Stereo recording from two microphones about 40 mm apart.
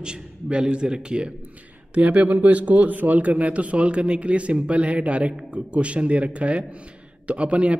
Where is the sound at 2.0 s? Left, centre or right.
Right.